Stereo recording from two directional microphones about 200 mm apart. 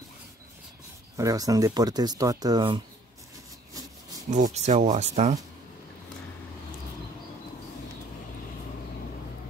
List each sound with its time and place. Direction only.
1.1 s speech: 15° right (ahead or behind)
4.3 s speech: 35° right (ahead or behind)